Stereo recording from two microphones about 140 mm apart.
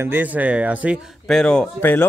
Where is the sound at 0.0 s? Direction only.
15° right (ahead or behind).